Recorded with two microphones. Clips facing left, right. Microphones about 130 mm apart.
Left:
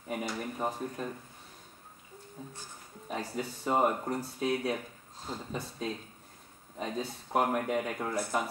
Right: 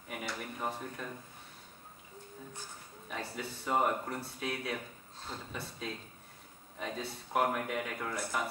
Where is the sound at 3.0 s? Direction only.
35° left (ahead or behind).